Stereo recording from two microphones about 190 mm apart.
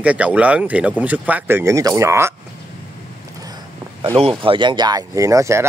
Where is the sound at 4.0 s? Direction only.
25° right (ahead or behind).